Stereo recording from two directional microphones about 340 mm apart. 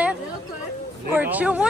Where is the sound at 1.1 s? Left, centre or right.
Centre.